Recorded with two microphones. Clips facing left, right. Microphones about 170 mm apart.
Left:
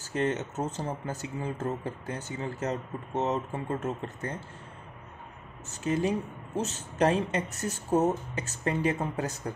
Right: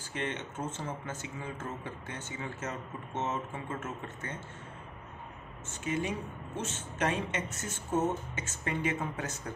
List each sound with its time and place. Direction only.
0.0 s speech: 40° left (ahead or behind)
5.7 s speech: 35° left (ahead or behind)